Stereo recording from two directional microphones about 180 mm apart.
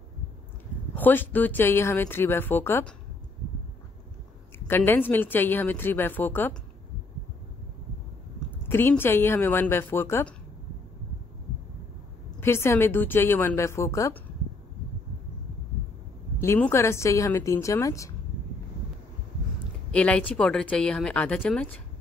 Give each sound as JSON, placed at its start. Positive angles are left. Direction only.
{"t": 0.9, "sound": "a woman's voice", "side_deg": 10}
{"t": 4.6, "sound": "a woman's voice", "side_deg": 10}
{"t": 8.6, "sound": "a woman's voice", "side_deg": 10}
{"t": 12.4, "sound": "a woman's voice", "side_deg": 15}
{"t": 16.3, "sound": "a woman's voice", "side_deg": 10}
{"t": 19.9, "sound": "a woman's voice", "side_deg": 5}